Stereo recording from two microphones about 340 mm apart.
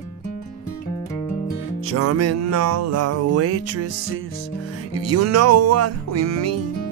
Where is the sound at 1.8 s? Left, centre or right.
Right.